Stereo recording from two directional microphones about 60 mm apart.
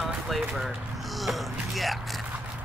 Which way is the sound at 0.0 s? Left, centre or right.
Centre.